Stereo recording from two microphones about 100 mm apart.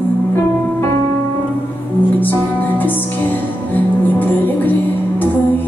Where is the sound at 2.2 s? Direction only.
20° left (ahead or behind).